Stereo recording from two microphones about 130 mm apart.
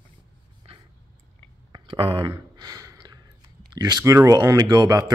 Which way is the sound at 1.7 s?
40° right (ahead or behind).